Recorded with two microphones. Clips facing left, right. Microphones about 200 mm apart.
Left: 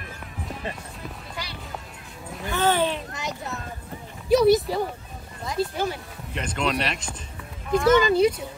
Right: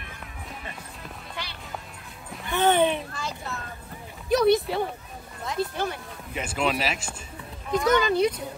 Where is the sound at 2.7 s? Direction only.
15° right (ahead or behind).